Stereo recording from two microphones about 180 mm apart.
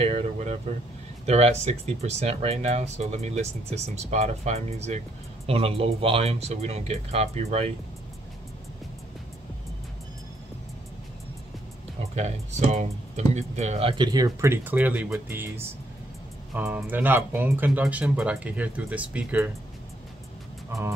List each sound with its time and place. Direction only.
0.0 s a sound: 35° right (ahead or behind)
1.2 s speech: 35° right (ahead or behind)
12.2 s speech: 40° right (ahead or behind); by 19.5 s 5° right (ahead or behind)